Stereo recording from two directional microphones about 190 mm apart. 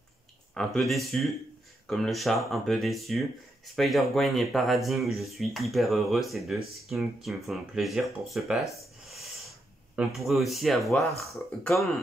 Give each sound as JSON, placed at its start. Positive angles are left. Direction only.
{"t": 0.6, "sound": "speech", "side_deg": 0}